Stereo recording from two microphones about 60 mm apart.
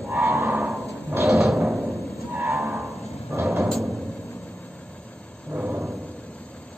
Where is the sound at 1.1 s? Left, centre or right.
Right.